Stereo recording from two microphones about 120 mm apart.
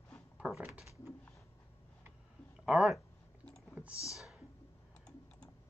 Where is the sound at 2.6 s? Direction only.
5° right (ahead or behind).